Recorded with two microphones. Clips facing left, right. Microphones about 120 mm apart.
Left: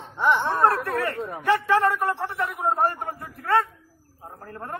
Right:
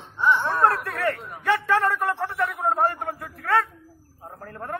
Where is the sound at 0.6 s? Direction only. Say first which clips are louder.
Right 1 dB; 30° left (ahead or behind).